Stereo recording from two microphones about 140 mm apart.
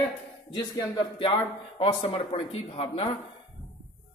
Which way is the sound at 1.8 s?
45° left (ahead or behind).